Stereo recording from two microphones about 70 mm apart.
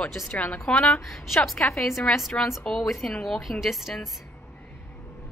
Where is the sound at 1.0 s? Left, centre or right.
Centre.